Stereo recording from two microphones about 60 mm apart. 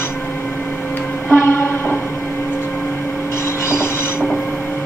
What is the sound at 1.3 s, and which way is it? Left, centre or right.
Music, left.